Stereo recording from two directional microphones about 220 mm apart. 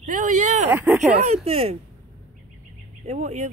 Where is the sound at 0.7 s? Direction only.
10° right (ahead or behind).